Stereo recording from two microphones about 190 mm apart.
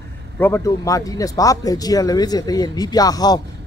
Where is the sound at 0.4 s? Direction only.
15° left (ahead or behind).